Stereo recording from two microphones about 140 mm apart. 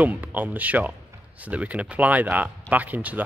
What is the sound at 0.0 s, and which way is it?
Speech, 10° right (ahead or behind).